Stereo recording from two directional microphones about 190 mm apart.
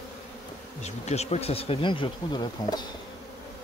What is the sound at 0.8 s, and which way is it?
Speech, 35° left (ahead or behind).